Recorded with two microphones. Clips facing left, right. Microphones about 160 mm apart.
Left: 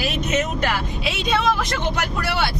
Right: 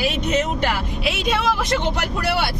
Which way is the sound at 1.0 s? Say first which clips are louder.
Even; 5° right (ahead or behind).